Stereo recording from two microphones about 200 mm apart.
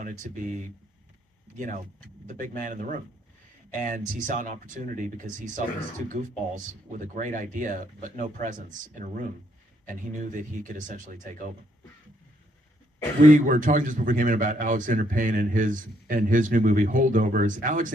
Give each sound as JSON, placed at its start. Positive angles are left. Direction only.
{"t": 2.2, "sound": "speech", "side_deg": -40}
{"t": 13.5, "sound": "speech", "side_deg": -40}